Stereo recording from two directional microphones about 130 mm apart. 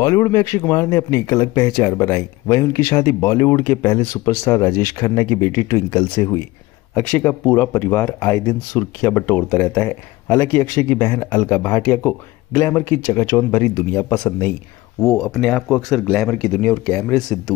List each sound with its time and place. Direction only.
0.0 s speech: 25° left (ahead or behind)
15.0 s speech: centre (ahead or behind)